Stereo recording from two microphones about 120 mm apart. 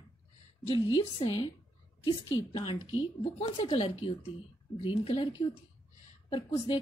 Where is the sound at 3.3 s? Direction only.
55° left (ahead or behind).